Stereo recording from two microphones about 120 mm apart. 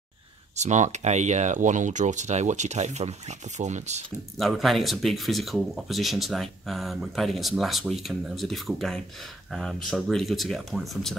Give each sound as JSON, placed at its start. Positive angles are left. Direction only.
{"t": 0.6, "sound": "speech", "side_deg": -85}
{"t": 4.4, "sound": "speech", "side_deg": 0}